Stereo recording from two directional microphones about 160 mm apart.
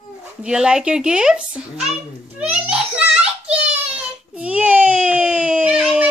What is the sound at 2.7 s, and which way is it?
Child singing, 5° right (ahead or behind).